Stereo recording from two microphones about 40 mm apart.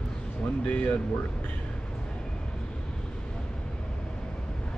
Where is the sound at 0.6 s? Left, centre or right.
Left.